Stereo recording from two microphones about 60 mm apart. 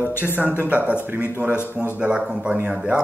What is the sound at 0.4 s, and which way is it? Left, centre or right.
Speech, right.